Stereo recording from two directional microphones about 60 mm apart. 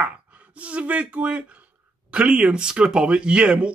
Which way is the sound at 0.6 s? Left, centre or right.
Right.